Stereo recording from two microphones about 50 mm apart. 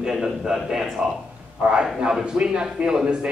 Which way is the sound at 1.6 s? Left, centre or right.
Centre.